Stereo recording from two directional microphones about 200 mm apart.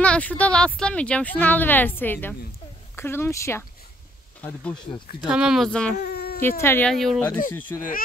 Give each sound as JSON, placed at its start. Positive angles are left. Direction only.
{"t": 0.0, "sound": "speech", "side_deg": 5}
{"t": 5.2, "sound": "speech", "side_deg": -5}
{"t": 5.9, "sound": "baby cry", "side_deg": 55}
{"t": 6.6, "sound": "speech", "side_deg": 10}